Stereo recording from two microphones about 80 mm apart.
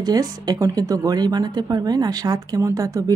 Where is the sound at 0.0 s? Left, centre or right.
Right.